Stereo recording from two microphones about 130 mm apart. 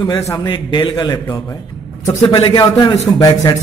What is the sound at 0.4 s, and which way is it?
A man's voice, 35° left (ahead or behind).